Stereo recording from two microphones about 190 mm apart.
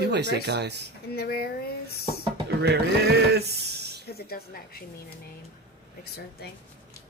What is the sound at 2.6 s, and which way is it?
Speech, 60° right (ahead or behind).